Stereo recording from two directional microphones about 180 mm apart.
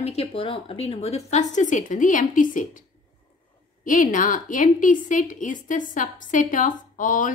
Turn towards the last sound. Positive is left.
turn(degrees=45)  # may be behind; listen again after turning